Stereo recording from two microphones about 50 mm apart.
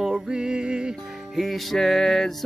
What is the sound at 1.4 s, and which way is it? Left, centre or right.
Music, centre.